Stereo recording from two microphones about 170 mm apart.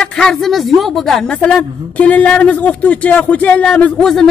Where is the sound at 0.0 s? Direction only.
5° left (ahead or behind).